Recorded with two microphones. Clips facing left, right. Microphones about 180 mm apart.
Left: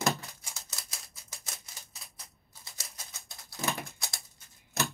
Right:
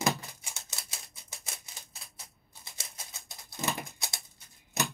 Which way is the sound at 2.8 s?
20° right (ahead or behind).